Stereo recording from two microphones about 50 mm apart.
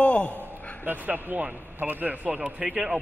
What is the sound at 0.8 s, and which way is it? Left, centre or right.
A man's voice, right.